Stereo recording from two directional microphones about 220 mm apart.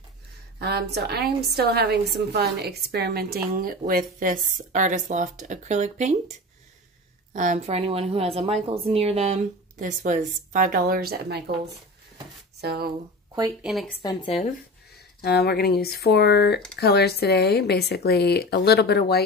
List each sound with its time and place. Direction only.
0.6 s a woman's voice: 45° right (ahead or behind)
7.3 s a woman's voice: 30° right (ahead or behind)
12.5 s speech: 45° right (ahead or behind)
13.6 s speech: centre (ahead or behind)
14.2 s speech: 30° left (ahead or behind)
15.2 s speech: 45° left (ahead or behind)